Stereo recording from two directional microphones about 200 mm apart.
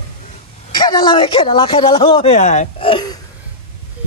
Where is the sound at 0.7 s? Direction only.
20° left (ahead or behind); by 2.9 s 35° left (ahead or behind).